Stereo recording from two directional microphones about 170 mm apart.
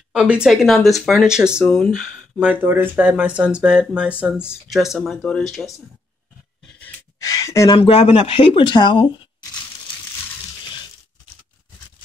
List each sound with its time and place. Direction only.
0.1 s speech: 5° right (ahead or behind)
7.2 s a sound: 20° left (ahead or behind)
7.7 s speech: 35° left (ahead or behind)